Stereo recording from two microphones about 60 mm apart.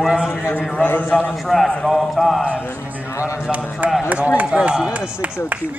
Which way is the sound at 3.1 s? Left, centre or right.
Left.